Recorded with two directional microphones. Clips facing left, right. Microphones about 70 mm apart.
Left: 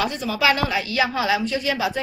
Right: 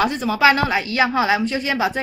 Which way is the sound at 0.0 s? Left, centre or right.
Right.